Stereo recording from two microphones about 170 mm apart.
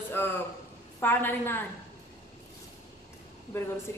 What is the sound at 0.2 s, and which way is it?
Speech, 15° left (ahead or behind).